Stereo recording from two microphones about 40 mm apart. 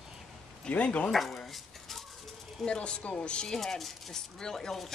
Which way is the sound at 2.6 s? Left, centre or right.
Left.